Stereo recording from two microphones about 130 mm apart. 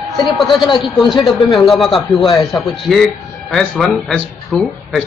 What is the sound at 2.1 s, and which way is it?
Speech, 40° left (ahead or behind).